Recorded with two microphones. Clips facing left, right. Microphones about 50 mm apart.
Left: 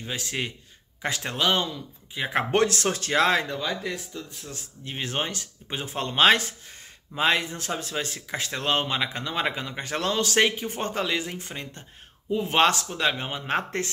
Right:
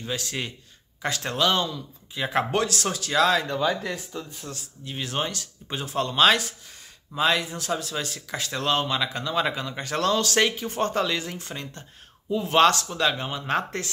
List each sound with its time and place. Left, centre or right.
0.0 s speech: left
2.5 s speech: left
4.1 s speech: centre
4.5 s speech: left